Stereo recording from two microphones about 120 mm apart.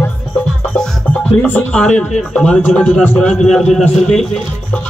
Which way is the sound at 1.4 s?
10° left (ahead or behind).